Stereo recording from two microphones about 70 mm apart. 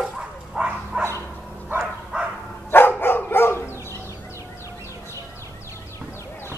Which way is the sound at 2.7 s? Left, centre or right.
Left.